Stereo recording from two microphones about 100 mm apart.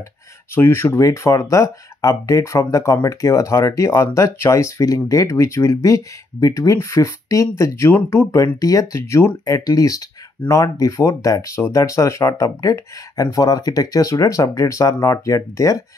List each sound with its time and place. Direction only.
0.6 s speech: 25° left (ahead or behind)